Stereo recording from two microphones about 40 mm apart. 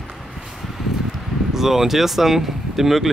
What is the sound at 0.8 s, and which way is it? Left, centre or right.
Rustling leaves, centre.